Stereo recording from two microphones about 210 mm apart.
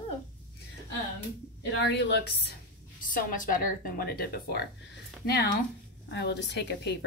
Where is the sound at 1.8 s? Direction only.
55° left (ahead or behind).